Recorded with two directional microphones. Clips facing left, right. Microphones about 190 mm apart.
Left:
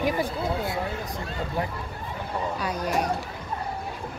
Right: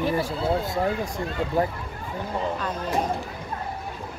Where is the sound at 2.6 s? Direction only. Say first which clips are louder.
Left 1 dB; 10° left (ahead or behind).